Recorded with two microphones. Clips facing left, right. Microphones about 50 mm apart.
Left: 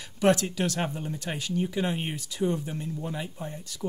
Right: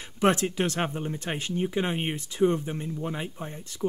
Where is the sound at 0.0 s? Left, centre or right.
Right.